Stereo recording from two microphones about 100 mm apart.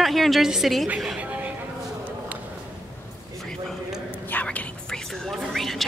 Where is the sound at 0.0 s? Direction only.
Centre (ahead or behind).